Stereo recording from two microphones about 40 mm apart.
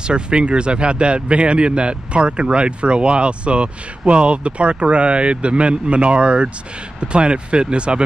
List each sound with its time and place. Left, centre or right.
0.0 s speech: right